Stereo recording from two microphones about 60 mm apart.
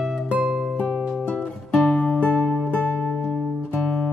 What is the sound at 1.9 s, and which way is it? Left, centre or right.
Music, centre.